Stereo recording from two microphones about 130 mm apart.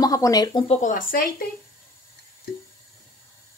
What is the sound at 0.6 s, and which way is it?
Speech, 80° left.